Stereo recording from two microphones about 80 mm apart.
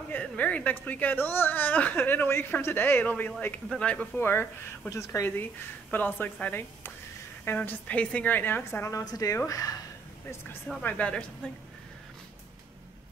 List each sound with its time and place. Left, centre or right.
0.1 s a woman's voice: centre
4.2 s a woman's voice: left
4.8 s a woman's voice: left
7.4 s a woman's voice: left
9.0 s speech: left
10.8 s speech: centre